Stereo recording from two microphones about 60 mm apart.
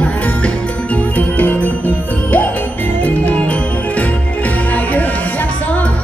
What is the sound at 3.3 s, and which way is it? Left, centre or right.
Music, left.